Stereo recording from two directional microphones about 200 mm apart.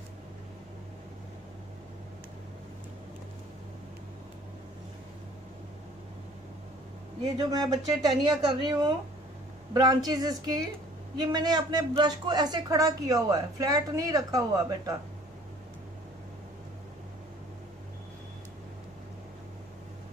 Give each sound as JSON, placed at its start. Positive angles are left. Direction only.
{"t": 7.5, "sound": "a man's voice", "side_deg": -20}